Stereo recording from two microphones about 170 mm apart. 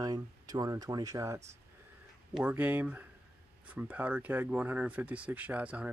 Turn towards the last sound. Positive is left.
turn(degrees=-10)  # may be behind; listen again after turning